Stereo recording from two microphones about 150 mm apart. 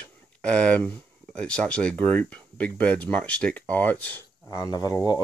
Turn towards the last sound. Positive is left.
turn(degrees=25)  # may be behind; listen again after turning